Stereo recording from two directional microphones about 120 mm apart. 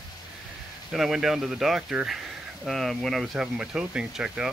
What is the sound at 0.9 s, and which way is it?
Speech, 5° right (ahead or behind).